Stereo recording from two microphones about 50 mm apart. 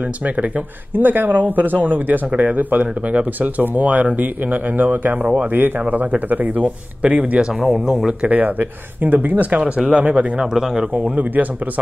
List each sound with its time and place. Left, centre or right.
0.9 s speech: right
7.6 s speech: centre
8.2 s speech: right
10.4 s speech: centre
11.0 s speech: right